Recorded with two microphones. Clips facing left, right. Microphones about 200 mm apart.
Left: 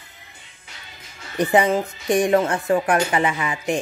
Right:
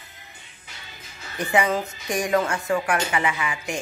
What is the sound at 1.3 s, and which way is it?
A woman's voice, 30° left (ahead or behind).